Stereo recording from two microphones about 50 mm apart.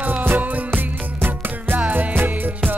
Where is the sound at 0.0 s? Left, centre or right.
Right.